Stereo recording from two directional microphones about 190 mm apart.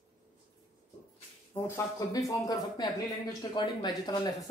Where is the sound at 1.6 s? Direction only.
15° left (ahead or behind).